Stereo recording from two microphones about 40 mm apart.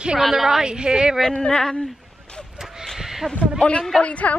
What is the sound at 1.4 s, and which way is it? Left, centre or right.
Speech, centre.